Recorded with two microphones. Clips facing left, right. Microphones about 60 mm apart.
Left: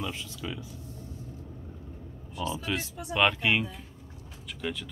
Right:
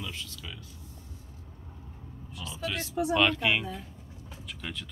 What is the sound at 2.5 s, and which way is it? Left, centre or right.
Speech, centre.